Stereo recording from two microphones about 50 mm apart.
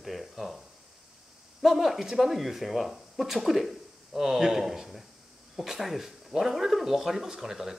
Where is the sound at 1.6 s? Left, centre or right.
Centre.